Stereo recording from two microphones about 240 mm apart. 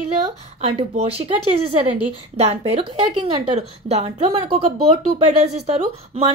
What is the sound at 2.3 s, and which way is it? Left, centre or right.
A woman's voice, right.